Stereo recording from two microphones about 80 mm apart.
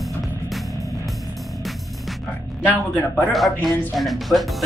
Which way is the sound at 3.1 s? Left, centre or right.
Centre.